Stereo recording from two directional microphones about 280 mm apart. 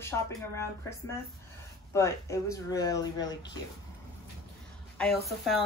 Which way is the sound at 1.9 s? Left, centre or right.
Centre.